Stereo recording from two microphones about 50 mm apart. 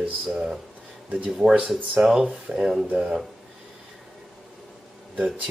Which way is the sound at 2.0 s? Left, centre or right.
Centre.